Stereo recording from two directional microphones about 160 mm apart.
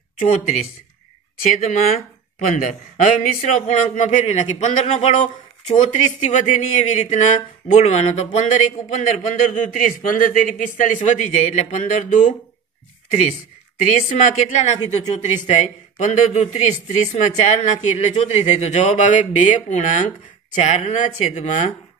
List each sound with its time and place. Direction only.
0.2 s a man's voice: 55° left (ahead or behind)
13.7 s a man's voice: 55° left (ahead or behind)